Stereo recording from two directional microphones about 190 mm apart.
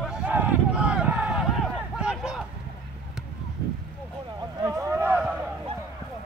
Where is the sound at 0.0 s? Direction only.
5° right (ahead or behind).